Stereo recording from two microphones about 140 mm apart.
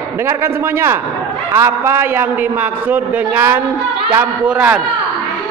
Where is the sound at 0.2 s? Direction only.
15° right (ahead or behind).